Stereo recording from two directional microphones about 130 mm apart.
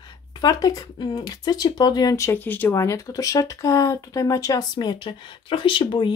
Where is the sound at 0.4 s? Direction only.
30° left (ahead or behind).